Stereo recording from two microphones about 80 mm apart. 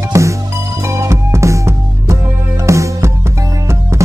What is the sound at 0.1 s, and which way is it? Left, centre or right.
Music, right.